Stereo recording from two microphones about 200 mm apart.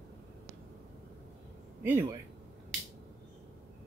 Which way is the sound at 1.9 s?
10° right (ahead or behind).